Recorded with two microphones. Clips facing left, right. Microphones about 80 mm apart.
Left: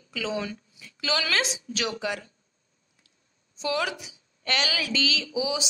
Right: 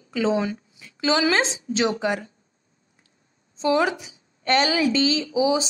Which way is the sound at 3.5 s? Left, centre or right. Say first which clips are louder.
Right 7 dB; right.